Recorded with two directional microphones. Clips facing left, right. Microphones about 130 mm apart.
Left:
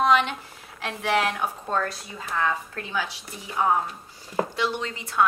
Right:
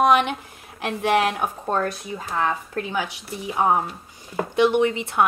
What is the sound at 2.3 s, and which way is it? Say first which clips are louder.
Speech: right 2 dB; 30° right (ahead or behind).